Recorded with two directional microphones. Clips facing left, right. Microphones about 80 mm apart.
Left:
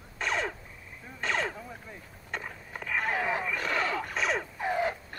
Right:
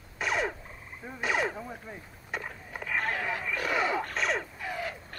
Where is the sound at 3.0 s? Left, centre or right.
Centre.